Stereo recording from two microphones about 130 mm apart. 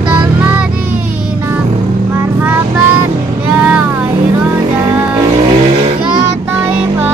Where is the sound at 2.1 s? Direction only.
15° right (ahead or behind).